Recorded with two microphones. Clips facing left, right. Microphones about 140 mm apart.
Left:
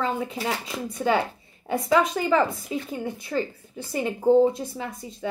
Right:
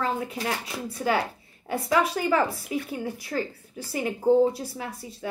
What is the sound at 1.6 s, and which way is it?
Speech, 5° right (ahead or behind).